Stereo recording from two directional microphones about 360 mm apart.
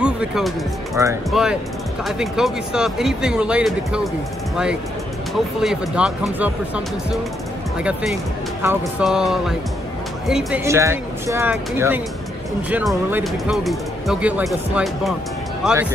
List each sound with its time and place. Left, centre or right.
0.0 s music: centre
0.9 s speech: centre
5.6 s speech: centre